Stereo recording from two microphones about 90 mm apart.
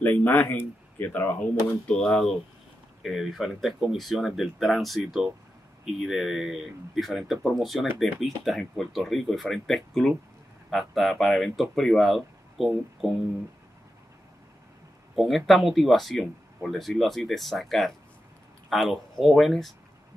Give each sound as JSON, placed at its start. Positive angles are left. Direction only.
{"t": 0.0, "sound": "speech", "side_deg": 20}
{"t": 1.9, "sound": "speech", "side_deg": 10}
{"t": 3.0, "sound": "speech", "side_deg": -5}
{"t": 15.1, "sound": "speech", "side_deg": 0}